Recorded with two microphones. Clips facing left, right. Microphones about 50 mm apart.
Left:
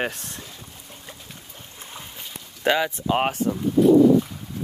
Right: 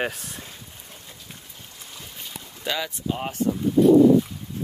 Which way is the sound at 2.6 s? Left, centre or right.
Left.